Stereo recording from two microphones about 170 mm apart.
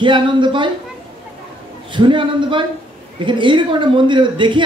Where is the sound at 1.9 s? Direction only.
30° right (ahead or behind).